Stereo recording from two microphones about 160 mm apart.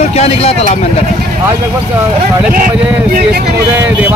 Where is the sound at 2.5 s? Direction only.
60° right (ahead or behind).